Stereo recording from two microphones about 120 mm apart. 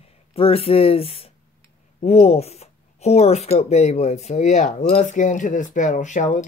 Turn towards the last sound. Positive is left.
turn(degrees=90)